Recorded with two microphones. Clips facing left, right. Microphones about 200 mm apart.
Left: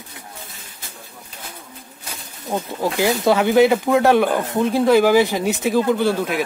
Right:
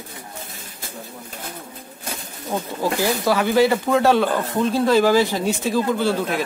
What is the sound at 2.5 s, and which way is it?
Speech, 20° left (ahead or behind).